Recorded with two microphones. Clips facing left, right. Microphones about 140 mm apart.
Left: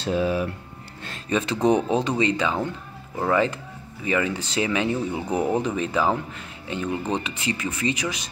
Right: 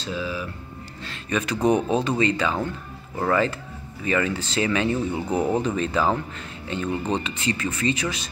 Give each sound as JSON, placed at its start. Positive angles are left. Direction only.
{"t": 0.0, "sound": "speech", "side_deg": 55}
{"t": 1.3, "sound": "speech", "side_deg": 25}